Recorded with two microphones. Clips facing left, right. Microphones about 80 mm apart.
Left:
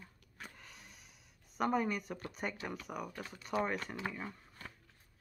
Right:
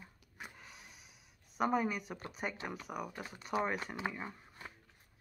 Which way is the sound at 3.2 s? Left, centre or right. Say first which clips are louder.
Even; centre.